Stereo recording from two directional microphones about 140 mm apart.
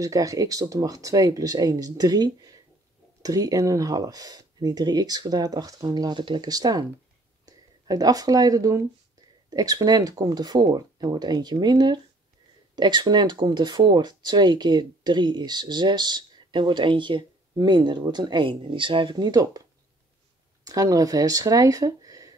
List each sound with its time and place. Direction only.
0.0 s speech: 25° right (ahead or behind)